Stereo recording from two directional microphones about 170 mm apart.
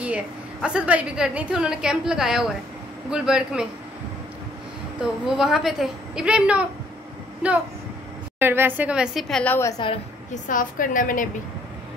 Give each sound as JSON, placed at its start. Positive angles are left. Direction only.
{"t": 0.0, "sound": "a woman's voice", "side_deg": -5}
{"t": 5.0, "sound": "a woman's voice", "side_deg": -5}
{"t": 10.3, "sound": "a woman's voice", "side_deg": 50}